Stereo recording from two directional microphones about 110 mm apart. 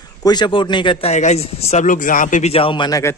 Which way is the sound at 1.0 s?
90° left.